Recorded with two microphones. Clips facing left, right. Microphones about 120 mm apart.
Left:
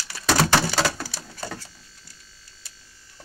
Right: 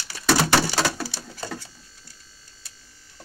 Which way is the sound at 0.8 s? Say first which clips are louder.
Even; centre (ahead or behind).